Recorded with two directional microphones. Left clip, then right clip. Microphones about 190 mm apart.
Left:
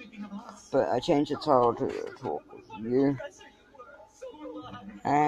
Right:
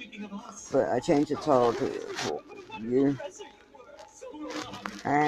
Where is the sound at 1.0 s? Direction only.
10° left (ahead or behind).